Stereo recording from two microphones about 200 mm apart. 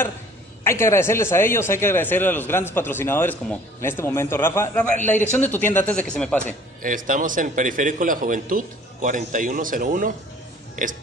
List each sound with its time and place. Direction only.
0.7 s a man's voice: 15° left (ahead or behind)
6.4 s a man's voice: 40° right (ahead or behind)